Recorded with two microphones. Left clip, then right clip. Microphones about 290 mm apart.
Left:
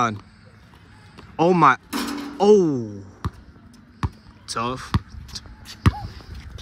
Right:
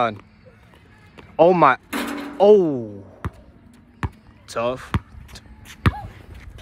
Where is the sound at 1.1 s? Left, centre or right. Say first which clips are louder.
Right 4 dB; centre.